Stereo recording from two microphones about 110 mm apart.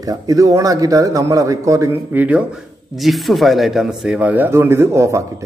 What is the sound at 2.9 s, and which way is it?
Speech, centre (ahead or behind).